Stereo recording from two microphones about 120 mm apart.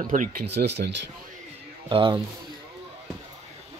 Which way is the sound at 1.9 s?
45° right (ahead or behind).